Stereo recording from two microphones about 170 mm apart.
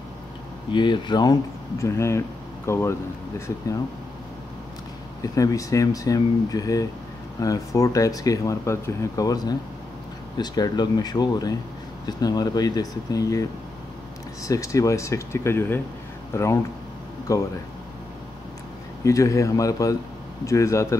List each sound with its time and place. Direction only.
0.7 s speech: 25° left (ahead or behind)
5.2 s speech: 20° left (ahead or behind)
19.0 s speech: 20° left (ahead or behind)